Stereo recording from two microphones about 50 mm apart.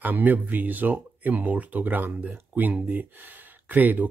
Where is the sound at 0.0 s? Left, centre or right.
Right.